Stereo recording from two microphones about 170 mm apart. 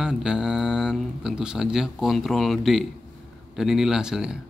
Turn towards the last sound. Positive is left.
turn(degrees=-5)  # may be behind; listen again after turning